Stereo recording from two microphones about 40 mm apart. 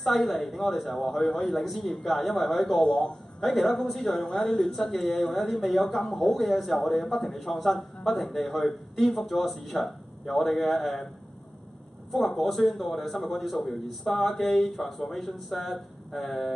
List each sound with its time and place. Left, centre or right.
0.0 s speech: centre
2.8 s a man's voice: centre
3.4 s speech: centre
12.4 s speech: centre